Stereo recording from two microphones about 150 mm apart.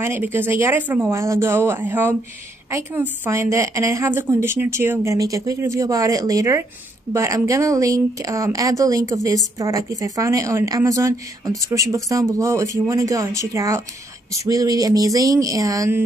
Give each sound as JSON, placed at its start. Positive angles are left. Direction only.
{"t": 0.0, "sound": "a woman's voice", "side_deg": -15}